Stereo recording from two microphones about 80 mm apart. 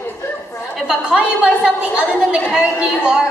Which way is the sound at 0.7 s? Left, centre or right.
Centre.